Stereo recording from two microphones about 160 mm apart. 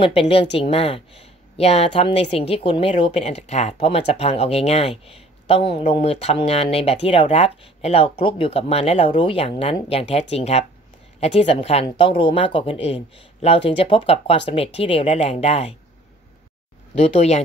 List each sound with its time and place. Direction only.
0.0 s a woman's voice: 35° left (ahead or behind)
16.9 s speech: 40° left (ahead or behind)